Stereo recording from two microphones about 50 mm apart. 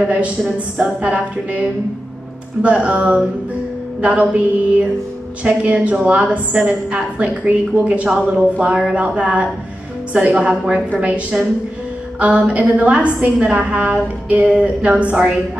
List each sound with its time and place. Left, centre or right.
1.0 s a woman's voice: right